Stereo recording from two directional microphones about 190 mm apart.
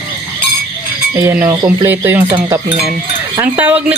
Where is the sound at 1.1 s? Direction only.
15° right (ahead or behind).